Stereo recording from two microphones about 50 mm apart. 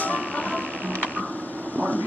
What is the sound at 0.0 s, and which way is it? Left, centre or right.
Music, left.